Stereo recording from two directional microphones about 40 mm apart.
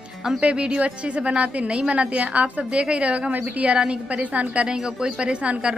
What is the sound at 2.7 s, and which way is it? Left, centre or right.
Speech, right.